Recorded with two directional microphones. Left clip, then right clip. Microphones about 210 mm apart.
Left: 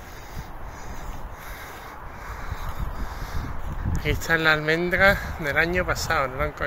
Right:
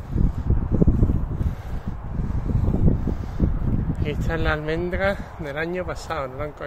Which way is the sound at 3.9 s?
10° right (ahead or behind).